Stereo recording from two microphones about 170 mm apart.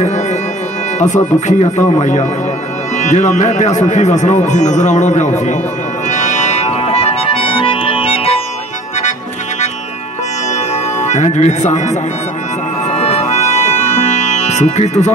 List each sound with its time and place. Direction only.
0.9 s speech: 45° left (ahead or behind)
6.0 s music: 45° left (ahead or behind)
11.0 s speech: 45° left (ahead or behind)
12.9 s music: 40° left (ahead or behind)